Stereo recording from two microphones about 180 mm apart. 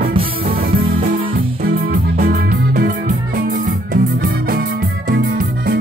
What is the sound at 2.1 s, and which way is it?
Music, 55° right (ahead or behind).